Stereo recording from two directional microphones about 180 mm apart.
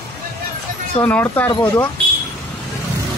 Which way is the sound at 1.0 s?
10° left (ahead or behind).